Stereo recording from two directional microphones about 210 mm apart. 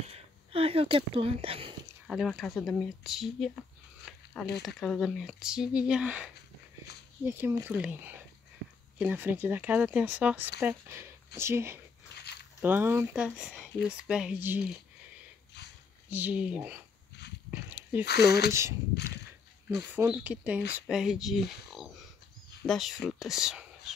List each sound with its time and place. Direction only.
0.1 s speech: 25° right (ahead or behind)
2.0 s speech: centre (ahead or behind)
4.1 s a sound: centre (ahead or behind)
4.6 s speech: centre (ahead or behind)
16.1 s speech: 10° right (ahead or behind)
17.5 s dog: 10° right (ahead or behind)
18.0 s speech: 50° left (ahead or behind)
18.5 s speech: 15° right (ahead or behind)
19.9 s speech: 5° right (ahead or behind)